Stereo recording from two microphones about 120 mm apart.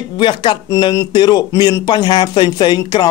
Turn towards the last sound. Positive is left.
turn(degrees=35)  # may be behind; listen again after turning